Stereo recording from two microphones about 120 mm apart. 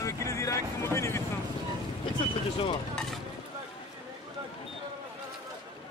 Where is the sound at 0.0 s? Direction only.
25° left (ahead or behind).